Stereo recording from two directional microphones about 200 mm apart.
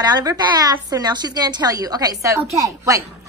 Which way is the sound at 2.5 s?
15° right (ahead or behind).